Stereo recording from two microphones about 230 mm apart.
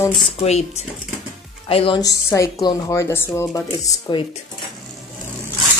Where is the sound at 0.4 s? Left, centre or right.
Left.